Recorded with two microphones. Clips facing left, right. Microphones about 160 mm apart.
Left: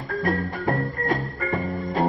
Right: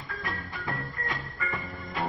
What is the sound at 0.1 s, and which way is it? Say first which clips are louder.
Music: left 13 dB; 50° left (ahead or behind).